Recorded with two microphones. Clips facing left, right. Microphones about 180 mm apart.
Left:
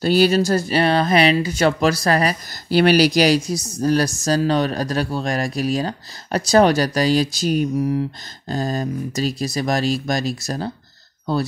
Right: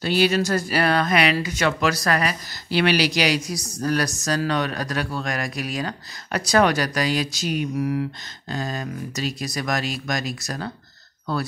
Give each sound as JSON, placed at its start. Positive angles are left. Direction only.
{"t": 0.0, "sound": "a woman's voice", "side_deg": 40}